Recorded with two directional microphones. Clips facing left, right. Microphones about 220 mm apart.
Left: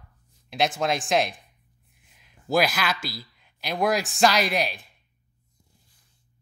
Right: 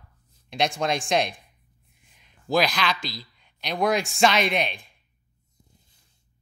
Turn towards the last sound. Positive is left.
turn(degrees=5)  # may be behind; listen again after turning